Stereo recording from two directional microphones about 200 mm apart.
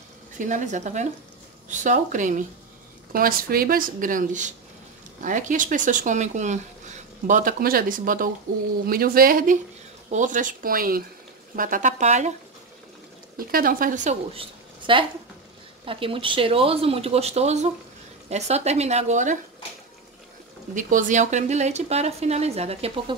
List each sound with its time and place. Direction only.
0.4 s speech: 40° right (ahead or behind)
13.4 s a woman's voice: 45° right (ahead or behind)
20.7 s speech: 40° right (ahead or behind)